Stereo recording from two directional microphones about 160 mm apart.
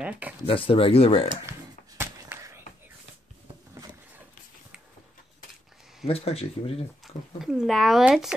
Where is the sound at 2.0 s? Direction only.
15° right (ahead or behind).